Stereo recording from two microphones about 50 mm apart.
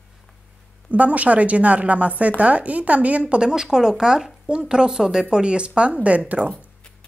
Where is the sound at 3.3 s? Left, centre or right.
Centre; by 6.4 s right.